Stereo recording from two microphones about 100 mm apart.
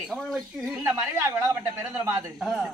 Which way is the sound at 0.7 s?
20° right (ahead or behind).